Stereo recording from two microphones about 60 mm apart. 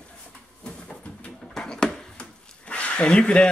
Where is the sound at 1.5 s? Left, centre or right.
Centre.